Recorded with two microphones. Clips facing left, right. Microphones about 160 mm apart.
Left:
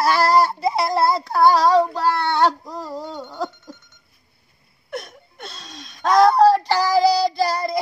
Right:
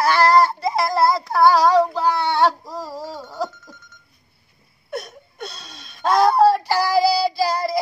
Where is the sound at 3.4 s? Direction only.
30° left (ahead or behind).